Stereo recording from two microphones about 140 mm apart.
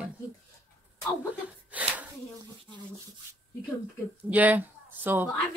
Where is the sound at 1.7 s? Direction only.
10° right (ahead or behind).